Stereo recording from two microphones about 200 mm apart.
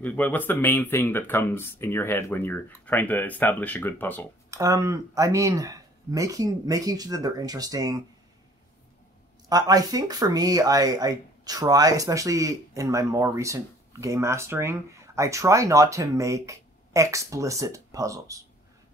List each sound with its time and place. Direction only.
0.0 s speech: 10° left (ahead or behind)
4.5 s speech: 15° right (ahead or behind)
9.5 s speech: 20° right (ahead or behind)